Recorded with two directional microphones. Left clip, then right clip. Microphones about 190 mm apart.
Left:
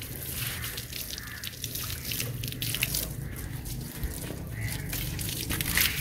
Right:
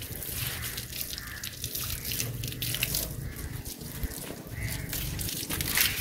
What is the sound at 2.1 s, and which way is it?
Water, 40° right (ahead or behind).